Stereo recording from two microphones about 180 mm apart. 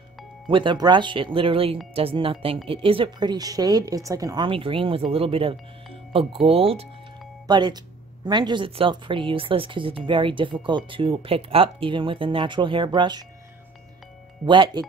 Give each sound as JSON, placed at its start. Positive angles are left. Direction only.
{"t": 0.5, "sound": "speech", "side_deg": -25}
{"t": 14.4, "sound": "speech", "side_deg": -25}